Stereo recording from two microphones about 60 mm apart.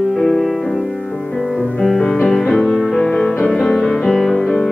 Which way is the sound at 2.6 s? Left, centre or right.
Centre.